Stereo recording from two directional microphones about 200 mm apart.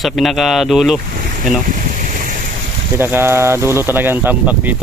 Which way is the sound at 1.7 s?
40° right (ahead or behind).